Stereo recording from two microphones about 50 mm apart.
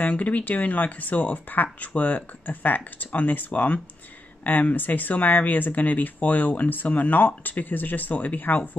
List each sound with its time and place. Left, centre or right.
0.0 s speech: left